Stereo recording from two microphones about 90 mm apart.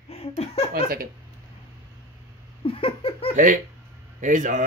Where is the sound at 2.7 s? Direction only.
90° left.